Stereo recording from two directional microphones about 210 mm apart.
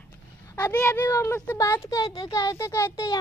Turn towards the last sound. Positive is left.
turn(degrees=15)  # may be behind; listen again after turning